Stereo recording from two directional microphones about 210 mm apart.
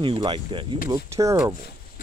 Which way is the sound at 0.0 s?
25° right (ahead or behind).